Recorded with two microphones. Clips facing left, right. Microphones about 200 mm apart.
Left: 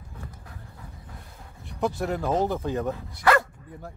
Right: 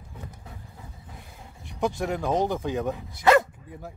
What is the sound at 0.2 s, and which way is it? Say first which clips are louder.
Vehicle: right 1 dB; 20° right (ahead or behind).